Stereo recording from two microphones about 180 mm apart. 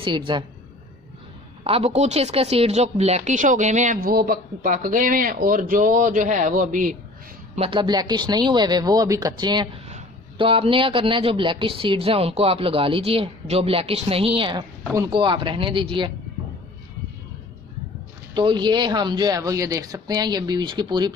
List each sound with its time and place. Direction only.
0.0 s speech: 25° right (ahead or behind)
1.6 s a woman's voice: 30° right (ahead or behind)
7.5 s a man's voice: 30° right (ahead or behind)
18.3 s speech: 25° right (ahead or behind)